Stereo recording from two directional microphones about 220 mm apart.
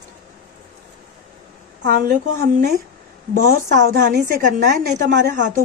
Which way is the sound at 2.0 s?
45° right (ahead or behind).